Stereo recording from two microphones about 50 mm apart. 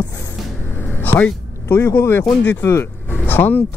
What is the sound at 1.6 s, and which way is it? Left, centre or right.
Speech, left.